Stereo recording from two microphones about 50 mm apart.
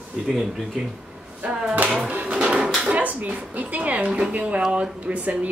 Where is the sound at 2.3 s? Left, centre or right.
Centre.